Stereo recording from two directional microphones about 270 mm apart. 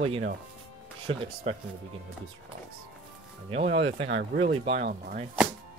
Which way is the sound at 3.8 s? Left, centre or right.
Right.